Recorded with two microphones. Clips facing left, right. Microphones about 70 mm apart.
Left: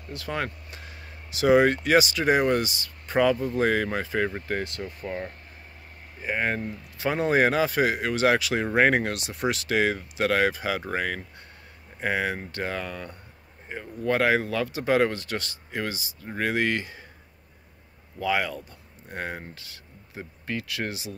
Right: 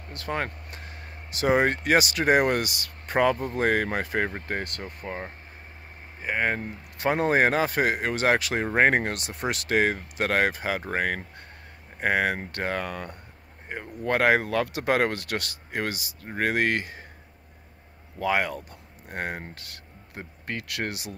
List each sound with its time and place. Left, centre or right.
0.1 s speech: right
4.6 s speech: right
5.0 s speech: right
7.0 s speech: right
18.2 s speech: right